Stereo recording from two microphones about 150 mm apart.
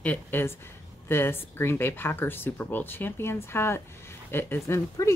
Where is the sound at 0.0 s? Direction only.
10° left (ahead or behind).